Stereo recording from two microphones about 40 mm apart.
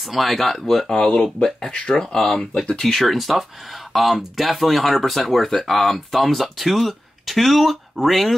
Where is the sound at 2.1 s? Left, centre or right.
Centre.